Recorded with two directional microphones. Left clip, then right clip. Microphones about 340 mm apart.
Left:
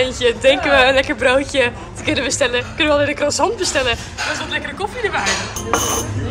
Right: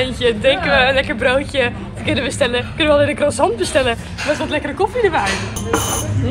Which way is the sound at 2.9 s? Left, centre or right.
Centre.